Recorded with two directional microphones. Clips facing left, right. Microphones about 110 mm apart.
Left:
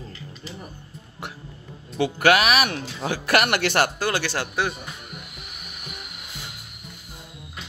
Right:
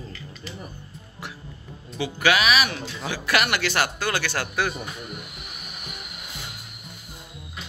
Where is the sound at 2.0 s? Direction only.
55° left (ahead or behind).